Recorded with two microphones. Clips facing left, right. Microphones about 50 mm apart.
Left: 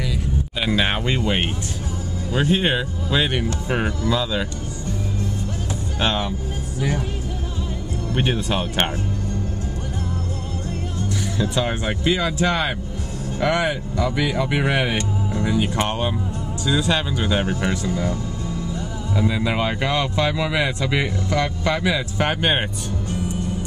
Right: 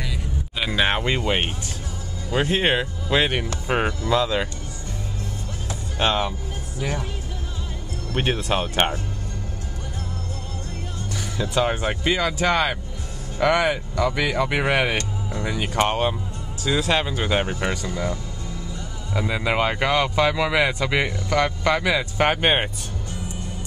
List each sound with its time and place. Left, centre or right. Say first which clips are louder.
0.7 s speech: even; centre
3.6 s speech: even; right
5.9 s speech: right 1 dB; centre
8.2 s speech: even; centre
11.3 s speech: right 2 dB; centre
19.1 s speech: even; centre